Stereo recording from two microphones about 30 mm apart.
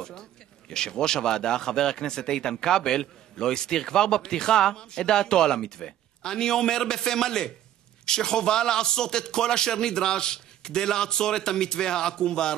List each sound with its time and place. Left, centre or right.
0.0 s speech: left